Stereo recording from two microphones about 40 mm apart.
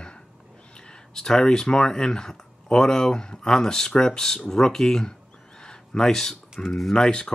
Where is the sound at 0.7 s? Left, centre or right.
Centre.